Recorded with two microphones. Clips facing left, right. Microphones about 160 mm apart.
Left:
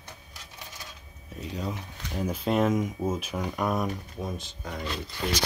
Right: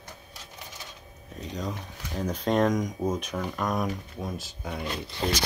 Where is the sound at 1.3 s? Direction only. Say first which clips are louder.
Even; 10° left (ahead or behind).